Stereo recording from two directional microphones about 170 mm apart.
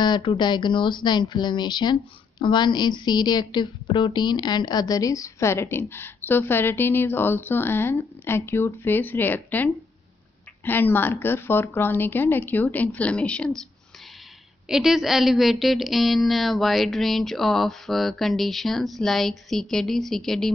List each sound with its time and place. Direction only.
0.0 s a woman's voice: 30° left (ahead or behind); by 13.5 s 5° left (ahead or behind)
14.7 s a woman's voice: centre (ahead or behind)